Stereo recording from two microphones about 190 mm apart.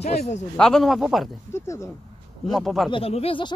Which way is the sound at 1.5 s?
15° left (ahead or behind).